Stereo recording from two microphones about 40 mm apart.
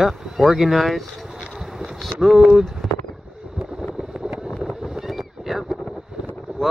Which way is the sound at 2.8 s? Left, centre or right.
Centre.